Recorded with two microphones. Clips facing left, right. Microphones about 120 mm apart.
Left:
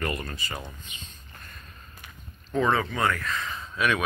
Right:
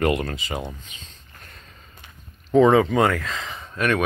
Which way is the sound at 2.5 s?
90° right.